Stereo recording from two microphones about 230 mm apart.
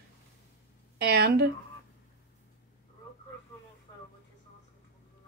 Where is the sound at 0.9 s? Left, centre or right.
Right.